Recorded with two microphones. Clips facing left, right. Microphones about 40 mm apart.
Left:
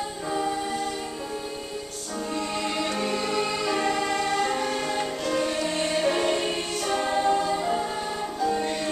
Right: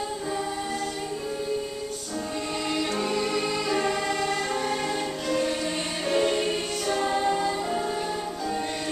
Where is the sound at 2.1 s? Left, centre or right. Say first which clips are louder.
Left 2 dB; centre.